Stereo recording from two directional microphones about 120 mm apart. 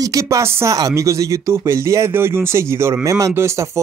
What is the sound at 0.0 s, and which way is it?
Speech, 25° right (ahead or behind).